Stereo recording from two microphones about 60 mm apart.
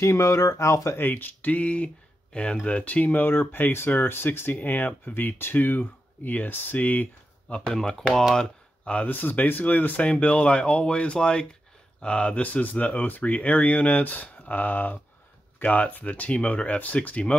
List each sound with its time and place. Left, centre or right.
0.0 s speech: left
0.9 s speech: left
7.5 s speech: centre
8.4 s speech: left